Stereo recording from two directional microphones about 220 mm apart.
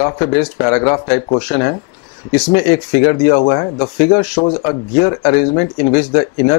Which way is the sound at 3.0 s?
20° left (ahead or behind).